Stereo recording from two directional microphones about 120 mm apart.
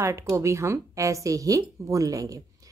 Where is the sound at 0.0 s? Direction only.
25° right (ahead or behind).